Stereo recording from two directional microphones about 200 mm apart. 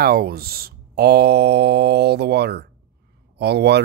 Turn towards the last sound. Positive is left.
turn(degrees=-55)  # may be behind; listen again after turning